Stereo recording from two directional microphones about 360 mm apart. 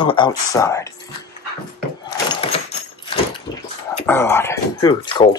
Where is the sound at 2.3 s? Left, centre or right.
Centre.